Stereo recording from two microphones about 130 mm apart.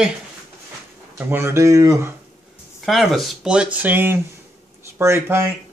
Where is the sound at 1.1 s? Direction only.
20° right (ahead or behind).